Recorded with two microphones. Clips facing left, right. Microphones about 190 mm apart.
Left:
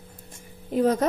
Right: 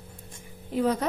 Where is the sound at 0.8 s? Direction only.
45° left (ahead or behind).